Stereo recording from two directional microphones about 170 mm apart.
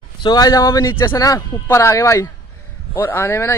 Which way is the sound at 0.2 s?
25° left (ahead or behind).